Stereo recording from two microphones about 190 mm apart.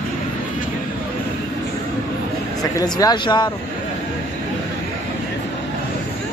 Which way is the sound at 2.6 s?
20° left (ahead or behind).